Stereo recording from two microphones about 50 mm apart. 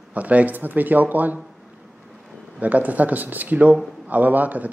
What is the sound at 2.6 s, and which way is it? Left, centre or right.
Speech, right.